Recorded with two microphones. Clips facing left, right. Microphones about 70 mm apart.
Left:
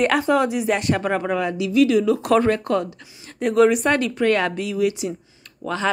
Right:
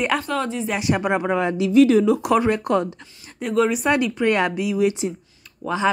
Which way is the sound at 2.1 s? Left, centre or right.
Centre.